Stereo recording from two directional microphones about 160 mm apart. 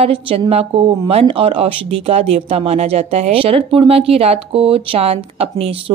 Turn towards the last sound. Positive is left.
turn(degrees=-35)  # may be behind; listen again after turning